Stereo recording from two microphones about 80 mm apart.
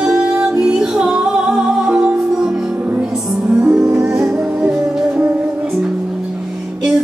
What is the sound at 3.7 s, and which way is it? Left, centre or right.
Music, right.